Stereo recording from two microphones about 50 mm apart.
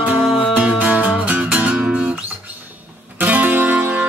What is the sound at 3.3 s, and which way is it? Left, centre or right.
Music, right.